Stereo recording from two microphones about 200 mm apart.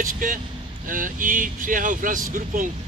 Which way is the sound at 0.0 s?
40° right (ahead or behind).